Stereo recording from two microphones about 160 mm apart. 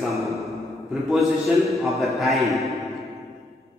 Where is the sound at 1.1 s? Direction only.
Centre (ahead or behind).